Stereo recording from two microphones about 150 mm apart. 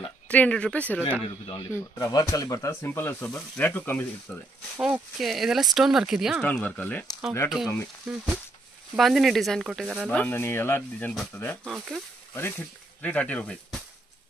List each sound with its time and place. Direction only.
0.3 s speech: 10° left (ahead or behind)
1.6 s speech: 20° left (ahead or behind)
4.7 s speech: 5° right (ahead or behind)
6.4 s speech: 10° left (ahead or behind)
7.4 s speech: centre (ahead or behind)
10.0 s speech: 10° left (ahead or behind)